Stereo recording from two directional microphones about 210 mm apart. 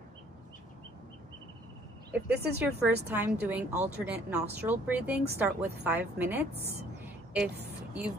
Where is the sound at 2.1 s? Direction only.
50° right (ahead or behind).